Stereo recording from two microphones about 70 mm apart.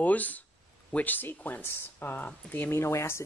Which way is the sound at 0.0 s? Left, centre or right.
Left.